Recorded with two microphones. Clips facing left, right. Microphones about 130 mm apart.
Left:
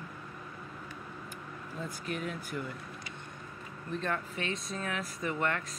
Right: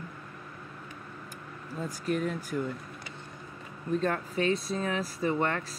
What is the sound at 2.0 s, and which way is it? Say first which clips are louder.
Speech: right 9 dB; 40° right (ahead or behind).